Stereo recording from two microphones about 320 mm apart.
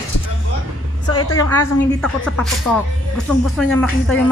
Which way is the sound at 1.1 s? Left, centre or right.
Left.